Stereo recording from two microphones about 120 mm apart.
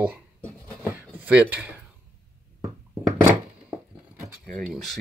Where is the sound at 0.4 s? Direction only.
10° left (ahead or behind).